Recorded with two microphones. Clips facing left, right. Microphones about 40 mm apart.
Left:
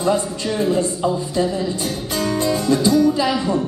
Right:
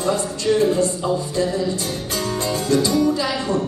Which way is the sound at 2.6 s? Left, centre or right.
Left.